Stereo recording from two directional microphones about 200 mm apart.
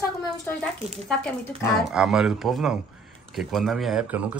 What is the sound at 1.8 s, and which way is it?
Speech, 5° right (ahead or behind).